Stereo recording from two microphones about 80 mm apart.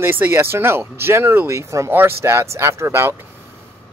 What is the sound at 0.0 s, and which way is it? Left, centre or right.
Speech, right.